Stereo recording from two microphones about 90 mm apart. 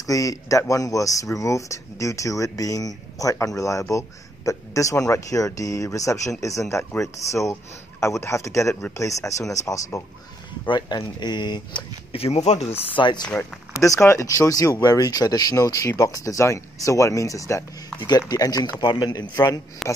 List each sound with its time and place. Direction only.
0.0 s speech: 40° left (ahead or behind)
10.7 s speech: 55° left (ahead or behind)
13.7 s speech: 35° left (ahead or behind)
14.4 s speech: 40° left (ahead or behind)
19.8 s a man's voice: centre (ahead or behind)